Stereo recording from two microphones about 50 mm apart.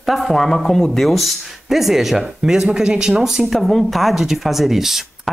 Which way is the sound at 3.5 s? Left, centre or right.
Centre.